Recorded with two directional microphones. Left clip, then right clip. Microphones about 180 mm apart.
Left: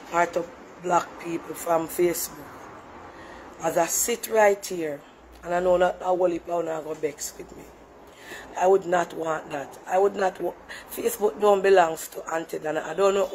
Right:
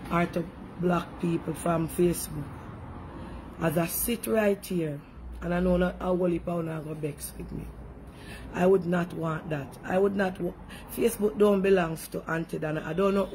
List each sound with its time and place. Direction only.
0.1 s speech: 20° right (ahead or behind)
3.6 s speech: 20° right (ahead or behind)
8.5 s speech: 20° right (ahead or behind)